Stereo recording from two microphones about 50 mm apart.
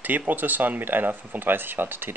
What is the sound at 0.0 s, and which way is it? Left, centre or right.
Speech, right.